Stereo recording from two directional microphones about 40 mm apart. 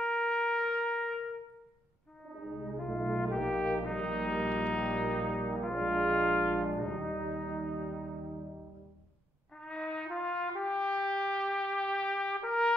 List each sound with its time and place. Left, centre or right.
0.0 s shofar: left
2.4 s brass instrument: centre
2.8 s brass instrument: left
7.8 s music: centre
9.6 s brass instrument: left